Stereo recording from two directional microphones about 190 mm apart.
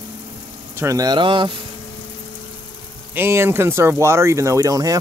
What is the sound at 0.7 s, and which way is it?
Speech, 15° right (ahead or behind).